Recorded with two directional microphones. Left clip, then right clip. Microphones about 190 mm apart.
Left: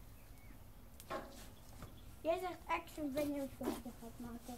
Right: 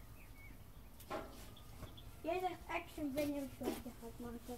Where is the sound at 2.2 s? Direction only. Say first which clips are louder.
Left 3 dB; 15° right (ahead or behind).